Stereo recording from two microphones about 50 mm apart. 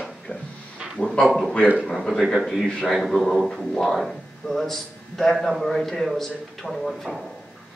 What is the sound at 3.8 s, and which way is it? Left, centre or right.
A man's voice, centre.